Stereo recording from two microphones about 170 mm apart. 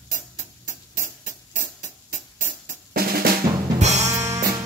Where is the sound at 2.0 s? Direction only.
50° right (ahead or behind).